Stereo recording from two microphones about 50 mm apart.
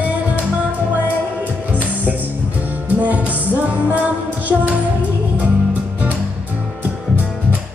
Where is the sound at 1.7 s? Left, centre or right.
Right.